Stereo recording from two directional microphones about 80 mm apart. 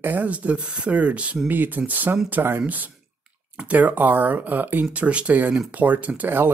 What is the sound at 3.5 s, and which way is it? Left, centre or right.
Speech, centre.